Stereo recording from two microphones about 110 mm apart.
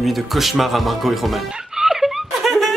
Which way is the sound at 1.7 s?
5° right (ahead or behind).